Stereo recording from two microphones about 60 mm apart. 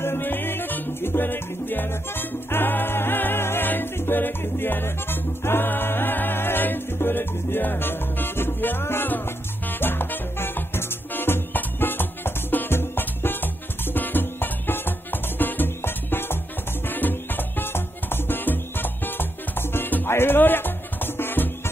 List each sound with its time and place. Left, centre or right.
0.0 s music: left